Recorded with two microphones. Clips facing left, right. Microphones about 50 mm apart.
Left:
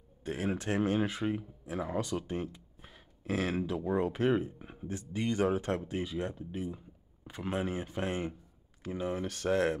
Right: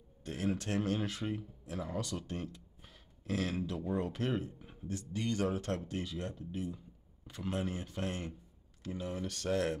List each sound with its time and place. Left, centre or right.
0.2 s speech: centre